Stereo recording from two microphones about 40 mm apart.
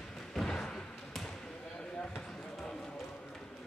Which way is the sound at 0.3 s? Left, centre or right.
Centre.